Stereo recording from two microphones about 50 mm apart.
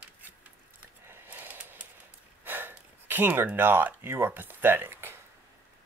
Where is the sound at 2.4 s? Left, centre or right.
Right.